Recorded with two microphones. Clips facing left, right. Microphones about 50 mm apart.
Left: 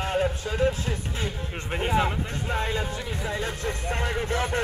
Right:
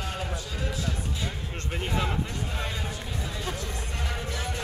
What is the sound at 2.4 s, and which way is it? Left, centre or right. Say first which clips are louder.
Music: left 6 dB; left.